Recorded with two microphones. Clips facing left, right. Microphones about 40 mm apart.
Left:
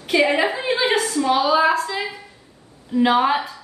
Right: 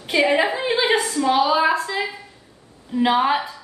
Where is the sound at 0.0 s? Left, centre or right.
Centre.